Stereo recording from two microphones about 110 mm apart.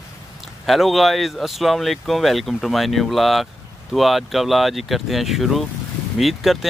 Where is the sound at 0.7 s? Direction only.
Centre (ahead or behind).